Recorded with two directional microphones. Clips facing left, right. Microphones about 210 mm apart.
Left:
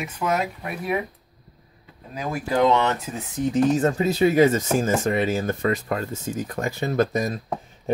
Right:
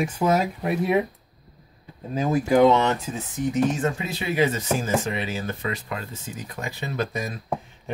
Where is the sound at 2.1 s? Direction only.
25° right (ahead or behind).